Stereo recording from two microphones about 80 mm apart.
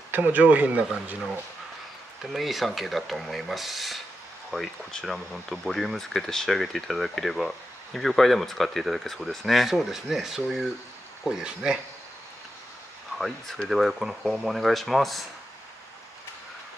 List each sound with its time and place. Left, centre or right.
0.1 s speech: right
2.3 s speech: centre
13.7 s speech: centre